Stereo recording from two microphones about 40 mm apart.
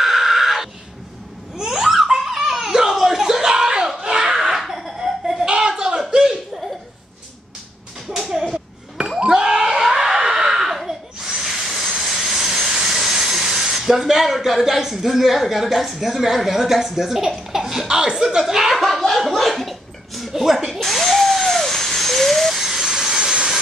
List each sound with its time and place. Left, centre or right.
0.0 s a sound: centre
1.6 s giggle: centre
4.0 s laughter: centre
5.4 s a sound: right
8.1 s a sound: centre
9.2 s screaming: centre
12.6 s speech: centre
17.5 s laughter: centre
17.8 s speech: centre
18.4 s speech: centre
20.8 s a sound: centre
22.5 s telephone dialing: centre
23.3 s jet engine: right